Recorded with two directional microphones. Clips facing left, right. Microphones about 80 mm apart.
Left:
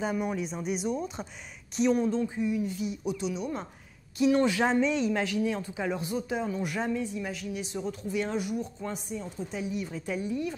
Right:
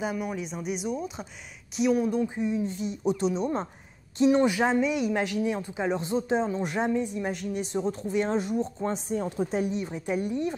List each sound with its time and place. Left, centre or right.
0.0 s speech: centre
2.2 s speech: right
4.2 s speech: right
7.2 s speech: right
7.8 s speech: right
9.1 s speech: right
9.7 s speech: right